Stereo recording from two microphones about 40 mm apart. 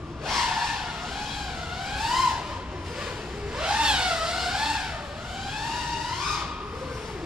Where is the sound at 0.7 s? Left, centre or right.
Centre.